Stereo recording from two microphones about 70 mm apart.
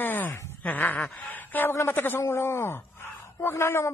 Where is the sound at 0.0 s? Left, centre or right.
Left.